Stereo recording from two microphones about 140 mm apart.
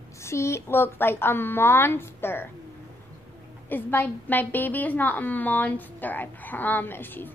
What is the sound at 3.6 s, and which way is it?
A woman's voice, 15° left (ahead or behind).